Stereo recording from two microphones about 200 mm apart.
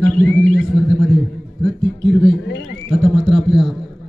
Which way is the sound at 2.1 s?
Centre (ahead or behind).